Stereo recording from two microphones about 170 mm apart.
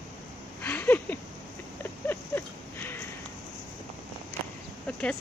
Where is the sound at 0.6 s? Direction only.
10° left (ahead or behind).